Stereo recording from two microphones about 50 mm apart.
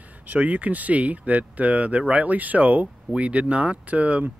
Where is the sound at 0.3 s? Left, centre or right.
Right.